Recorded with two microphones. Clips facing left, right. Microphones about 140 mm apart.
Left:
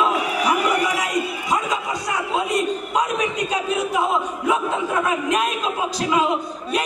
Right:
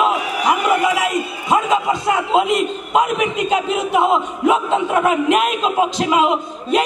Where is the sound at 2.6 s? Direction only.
90° right.